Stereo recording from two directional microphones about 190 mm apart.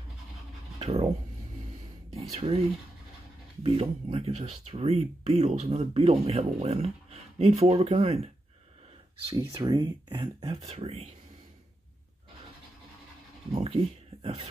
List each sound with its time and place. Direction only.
0.7 s speech: 30° right (ahead or behind)
2.1 s speech: 30° right (ahead or behind)
3.6 s speech: 30° right (ahead or behind)
9.3 s speech: 20° right (ahead or behind)
10.7 s speech: 35° right (ahead or behind)
13.5 s speech: 30° right (ahead or behind)